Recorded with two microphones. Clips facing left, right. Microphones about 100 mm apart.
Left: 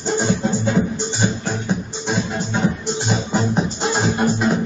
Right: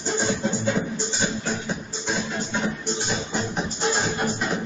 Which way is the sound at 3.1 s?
35° left (ahead or behind).